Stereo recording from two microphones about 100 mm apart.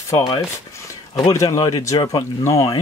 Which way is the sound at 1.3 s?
35° left (ahead or behind).